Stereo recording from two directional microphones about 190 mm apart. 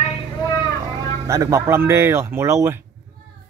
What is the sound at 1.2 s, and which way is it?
Speech, 15° right (ahead or behind).